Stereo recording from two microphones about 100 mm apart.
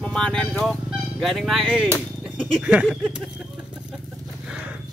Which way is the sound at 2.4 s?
Centre (ahead or behind).